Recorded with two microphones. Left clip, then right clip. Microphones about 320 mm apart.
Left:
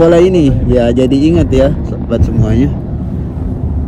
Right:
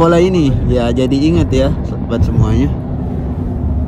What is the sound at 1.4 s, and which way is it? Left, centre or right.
Speech, centre.